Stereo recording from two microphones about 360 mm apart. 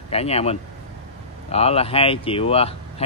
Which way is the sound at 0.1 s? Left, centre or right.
Centre.